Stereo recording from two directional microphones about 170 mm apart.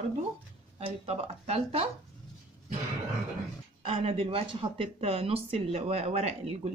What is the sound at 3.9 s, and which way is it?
Speech, 30° right (ahead or behind).